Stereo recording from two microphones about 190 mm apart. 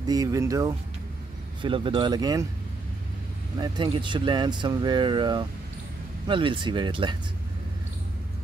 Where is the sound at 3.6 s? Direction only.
25° right (ahead or behind).